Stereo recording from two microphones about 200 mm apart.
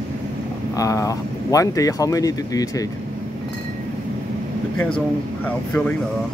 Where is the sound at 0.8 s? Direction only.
15° left (ahead or behind).